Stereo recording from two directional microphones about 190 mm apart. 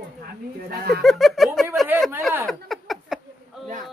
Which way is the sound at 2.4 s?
Centre (ahead or behind).